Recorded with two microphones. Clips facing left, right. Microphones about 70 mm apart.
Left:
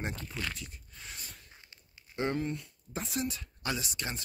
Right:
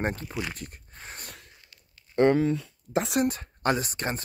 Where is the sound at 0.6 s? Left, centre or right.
Right.